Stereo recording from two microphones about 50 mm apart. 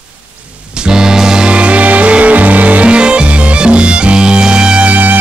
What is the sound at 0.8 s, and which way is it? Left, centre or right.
Music, centre.